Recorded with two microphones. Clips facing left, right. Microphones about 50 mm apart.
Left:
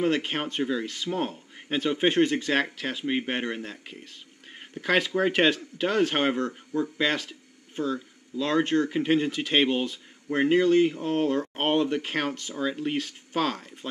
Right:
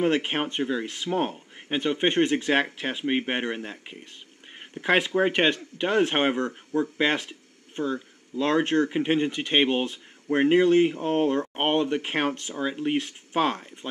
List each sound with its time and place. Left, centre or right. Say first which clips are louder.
0.0 s speech: right 2 dB; right
1.8 s speech: even; centre
7.0 s speech: right 2 dB; right
9.8 s speech: right 1 dB; right